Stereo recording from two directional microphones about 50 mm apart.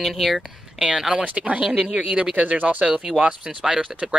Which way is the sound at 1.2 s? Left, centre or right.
Right.